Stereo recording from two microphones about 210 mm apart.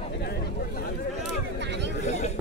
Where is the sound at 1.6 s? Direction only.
55° right (ahead or behind).